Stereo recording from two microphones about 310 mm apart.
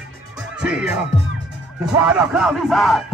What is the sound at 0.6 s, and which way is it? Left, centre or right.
Music, centre.